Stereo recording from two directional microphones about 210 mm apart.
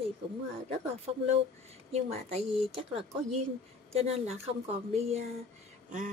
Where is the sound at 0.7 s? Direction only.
30° right (ahead or behind).